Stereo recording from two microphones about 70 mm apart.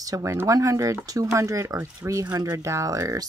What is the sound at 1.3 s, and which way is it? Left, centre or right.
Speech, right.